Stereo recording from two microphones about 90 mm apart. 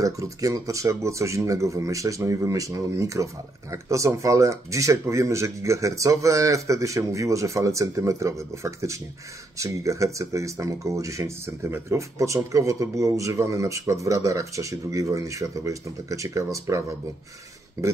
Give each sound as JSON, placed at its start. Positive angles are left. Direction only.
{"t": 0.0, "sound": "speech", "side_deg": -40}